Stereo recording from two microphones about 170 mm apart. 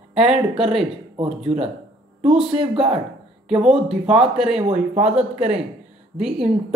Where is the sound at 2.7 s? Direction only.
35° right (ahead or behind).